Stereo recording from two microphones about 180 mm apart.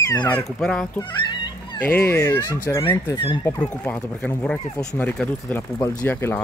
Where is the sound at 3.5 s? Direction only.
10° left (ahead or behind).